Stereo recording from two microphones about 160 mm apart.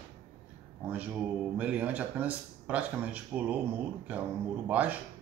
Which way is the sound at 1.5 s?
10° right (ahead or behind).